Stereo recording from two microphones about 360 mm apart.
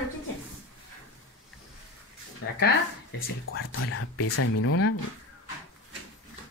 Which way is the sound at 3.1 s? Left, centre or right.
Left.